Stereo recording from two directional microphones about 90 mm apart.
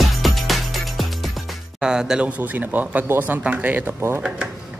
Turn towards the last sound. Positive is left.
turn(degrees=-20)  # may be behind; listen again after turning